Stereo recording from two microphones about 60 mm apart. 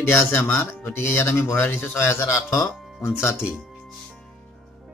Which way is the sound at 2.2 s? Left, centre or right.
Left.